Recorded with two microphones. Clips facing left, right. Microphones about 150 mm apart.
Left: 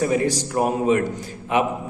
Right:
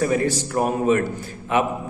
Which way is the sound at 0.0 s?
15° left (ahead or behind).